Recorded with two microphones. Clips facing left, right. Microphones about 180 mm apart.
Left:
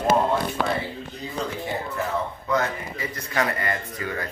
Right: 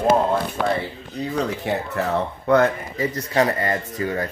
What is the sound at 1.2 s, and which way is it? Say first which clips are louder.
Speech: right 7 dB; 70° right (ahead or behind).